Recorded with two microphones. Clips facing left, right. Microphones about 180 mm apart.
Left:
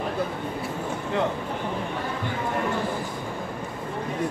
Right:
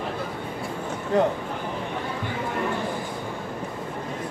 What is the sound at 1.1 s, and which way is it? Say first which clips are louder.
Speech: right 5 dB; 40° right (ahead or behind).